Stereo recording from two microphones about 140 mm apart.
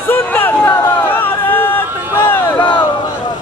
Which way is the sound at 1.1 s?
15° left (ahead or behind).